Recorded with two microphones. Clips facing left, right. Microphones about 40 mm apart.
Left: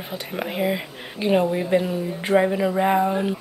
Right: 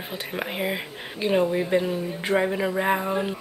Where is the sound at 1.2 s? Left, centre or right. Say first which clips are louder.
Left 2 dB; centre.